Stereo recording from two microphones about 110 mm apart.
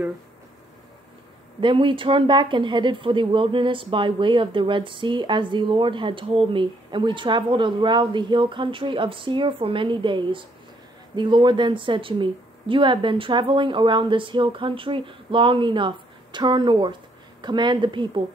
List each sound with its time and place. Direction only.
1.6 s speech: 50° right (ahead or behind)